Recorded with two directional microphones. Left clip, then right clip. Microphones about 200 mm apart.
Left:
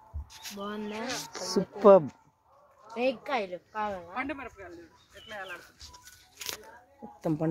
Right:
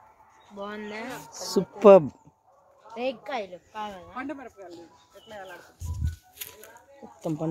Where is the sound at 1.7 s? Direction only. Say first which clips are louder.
Right 4 dB; 20° right (ahead or behind).